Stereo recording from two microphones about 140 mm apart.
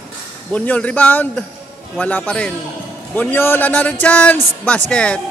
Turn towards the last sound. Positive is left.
turn(degrees=5)  # may be behind; listen again after turning